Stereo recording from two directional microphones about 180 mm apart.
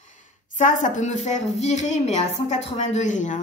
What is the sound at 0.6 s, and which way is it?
A woman's voice, 45° left (ahead or behind).